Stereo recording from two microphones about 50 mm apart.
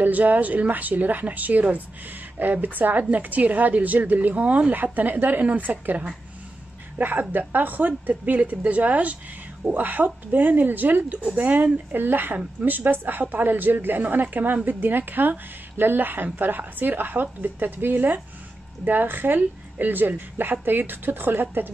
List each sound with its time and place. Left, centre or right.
0.0 s a woman's voice: right